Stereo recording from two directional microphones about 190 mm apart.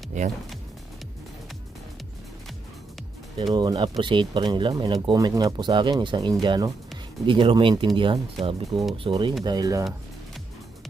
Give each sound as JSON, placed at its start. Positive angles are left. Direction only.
{"t": 3.5, "sound": "speech", "side_deg": -20}